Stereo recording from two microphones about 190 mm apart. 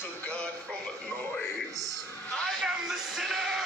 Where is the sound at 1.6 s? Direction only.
15° right (ahead or behind).